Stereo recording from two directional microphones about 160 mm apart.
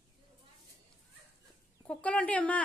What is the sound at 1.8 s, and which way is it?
Speech, 10° left (ahead or behind).